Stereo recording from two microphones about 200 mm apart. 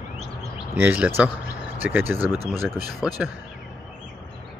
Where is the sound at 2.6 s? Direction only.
20° left (ahead or behind).